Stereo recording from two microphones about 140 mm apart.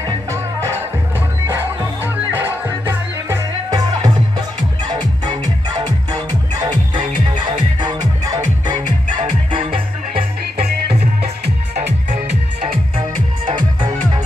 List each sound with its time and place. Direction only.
0.3 s music: 20° right (ahead or behind)
2.3 s music: 15° right (ahead or behind)
4.8 s music: 30° right (ahead or behind)
6.6 s music: 30° right (ahead or behind)
8.3 s music: 30° right (ahead or behind)
12.9 s music: 45° right (ahead or behind)